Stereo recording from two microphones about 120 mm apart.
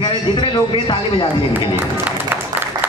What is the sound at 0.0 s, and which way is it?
A man's voice, 45° left (ahead or behind).